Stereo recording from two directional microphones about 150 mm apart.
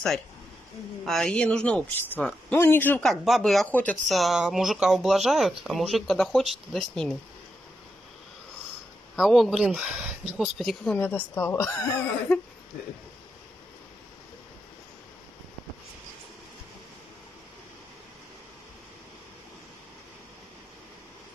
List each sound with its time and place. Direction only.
1.0 s speech: centre (ahead or behind)
3.1 s speech: centre (ahead or behind)
9.1 s speech: centre (ahead or behind)
11.0 s speech: 10° left (ahead or behind)